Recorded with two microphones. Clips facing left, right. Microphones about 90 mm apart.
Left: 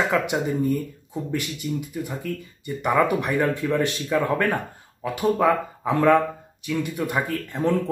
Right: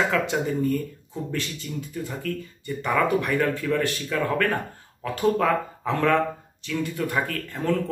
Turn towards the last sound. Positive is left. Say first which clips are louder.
# left 2 dB
turn(degrees=20)  # may be behind; listen again after turning